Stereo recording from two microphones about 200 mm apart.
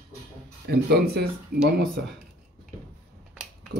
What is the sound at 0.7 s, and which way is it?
Speech, 50° right (ahead or behind).